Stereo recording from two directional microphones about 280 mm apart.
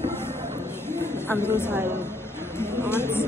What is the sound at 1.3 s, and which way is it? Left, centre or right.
Speech, centre.